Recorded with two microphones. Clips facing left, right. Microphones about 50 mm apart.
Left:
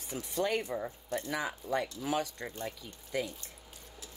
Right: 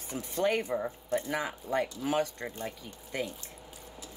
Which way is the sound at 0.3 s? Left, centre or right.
Right.